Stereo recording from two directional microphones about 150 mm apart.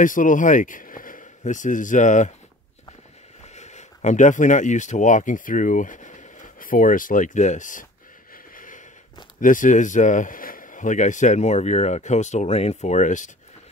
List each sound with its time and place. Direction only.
0.0 s speech: 60° left (ahead or behind)
3.5 s speech: 50° left (ahead or behind)
8.5 s a sound: 65° left (ahead or behind)
9.4 s speech: 60° left (ahead or behind)